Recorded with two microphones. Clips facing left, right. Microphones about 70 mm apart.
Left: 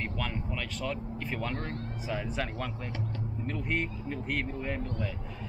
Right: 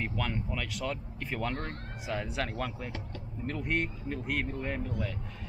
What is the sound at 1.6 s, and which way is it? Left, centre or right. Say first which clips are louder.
Speech: left 2 dB; right.